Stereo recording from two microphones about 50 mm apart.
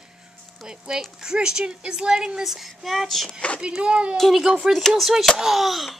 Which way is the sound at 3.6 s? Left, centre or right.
Centre.